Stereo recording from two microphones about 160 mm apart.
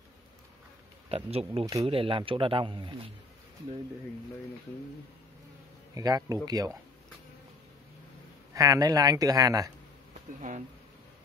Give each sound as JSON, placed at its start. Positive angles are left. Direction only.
{"t": 1.0, "sound": "a man's voice", "side_deg": -35}
{"t": 5.9, "sound": "speech", "side_deg": -20}
{"t": 8.5, "sound": "speech", "side_deg": -20}
{"t": 10.4, "sound": "speech", "side_deg": -55}